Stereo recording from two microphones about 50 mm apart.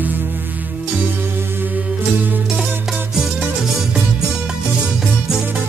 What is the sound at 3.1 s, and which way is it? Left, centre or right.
Music, centre.